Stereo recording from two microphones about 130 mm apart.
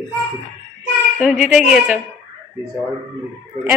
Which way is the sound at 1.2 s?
5° right (ahead or behind).